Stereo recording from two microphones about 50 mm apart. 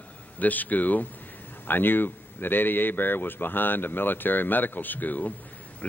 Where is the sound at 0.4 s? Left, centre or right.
Left.